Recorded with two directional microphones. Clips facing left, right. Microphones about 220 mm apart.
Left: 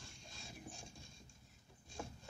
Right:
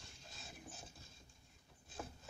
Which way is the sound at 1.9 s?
Centre (ahead or behind).